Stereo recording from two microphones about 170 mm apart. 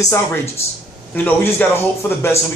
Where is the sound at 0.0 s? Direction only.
15° left (ahead or behind).